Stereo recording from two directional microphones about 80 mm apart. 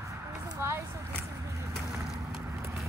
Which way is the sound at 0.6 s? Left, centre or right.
Right.